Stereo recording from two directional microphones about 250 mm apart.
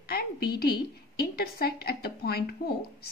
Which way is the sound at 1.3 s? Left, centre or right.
Left.